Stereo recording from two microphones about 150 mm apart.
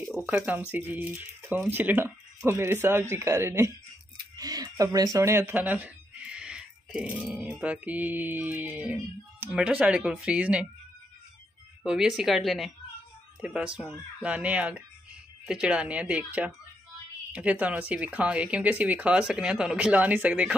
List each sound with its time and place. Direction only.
0.3 s speech: 10° right (ahead or behind)
4.4 s a sound: 25° right (ahead or behind)
4.9 s speech: 25° right (ahead or behind); by 10.7 s 5° right (ahead or behind)
11.8 s speech: 5° right (ahead or behind)